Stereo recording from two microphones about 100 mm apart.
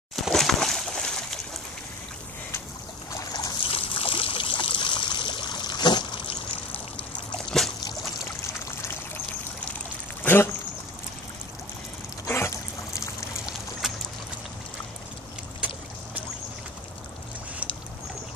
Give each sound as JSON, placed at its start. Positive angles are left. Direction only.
{"t": 0.1, "sound": "a sound", "side_deg": 5}
{"t": 3.2, "sound": "boat", "side_deg": 40}
{"t": 3.7, "sound": "trickle", "side_deg": 65}
{"t": 7.5, "sound": "trickle", "side_deg": 5}
{"t": 8.6, "sound": "trickle", "side_deg": 25}
{"t": 10.2, "sound": "a sound", "side_deg": 20}
{"t": 12.3, "sound": "trickle", "side_deg": 30}
{"t": 13.8, "sound": "boat", "side_deg": -5}